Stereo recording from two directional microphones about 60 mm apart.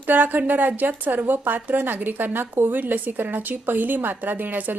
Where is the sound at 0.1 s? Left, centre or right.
Right.